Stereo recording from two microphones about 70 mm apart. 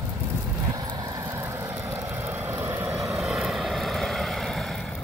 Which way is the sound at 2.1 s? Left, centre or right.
Right.